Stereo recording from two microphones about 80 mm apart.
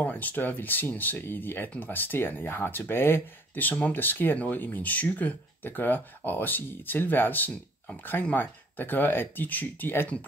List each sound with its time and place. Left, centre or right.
0.0 s speech: left